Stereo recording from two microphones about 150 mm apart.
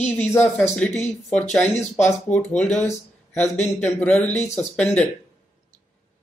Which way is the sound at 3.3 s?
50° left (ahead or behind).